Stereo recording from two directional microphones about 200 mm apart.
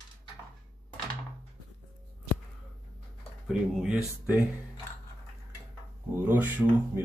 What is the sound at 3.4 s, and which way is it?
Speech, centre (ahead or behind).